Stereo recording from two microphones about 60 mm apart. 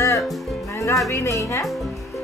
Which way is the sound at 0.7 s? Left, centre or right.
Left.